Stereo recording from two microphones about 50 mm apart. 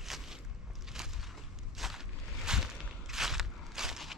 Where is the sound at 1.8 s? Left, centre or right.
Centre.